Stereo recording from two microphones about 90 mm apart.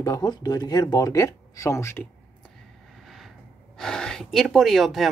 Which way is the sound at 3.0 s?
Centre (ahead or behind).